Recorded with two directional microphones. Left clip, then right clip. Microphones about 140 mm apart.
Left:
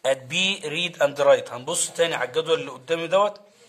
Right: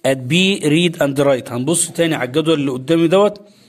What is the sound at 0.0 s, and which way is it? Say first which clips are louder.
A man's voice: right 6 dB; 50° right (ahead or behind).